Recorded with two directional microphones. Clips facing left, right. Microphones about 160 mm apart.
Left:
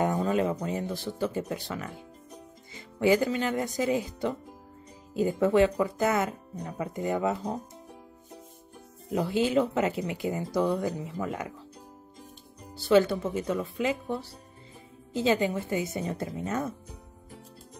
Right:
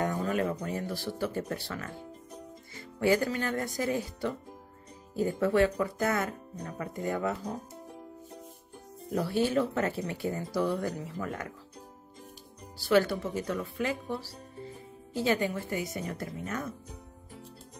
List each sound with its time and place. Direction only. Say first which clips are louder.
0.0 s speech: left 4 dB; 20° left (ahead or behind)
9.1 s speech: left 2 dB; 20° left (ahead or behind)
12.7 s speech: left 3 dB; 20° left (ahead or behind)
15.1 s speech: left 3 dB; 20° left (ahead or behind)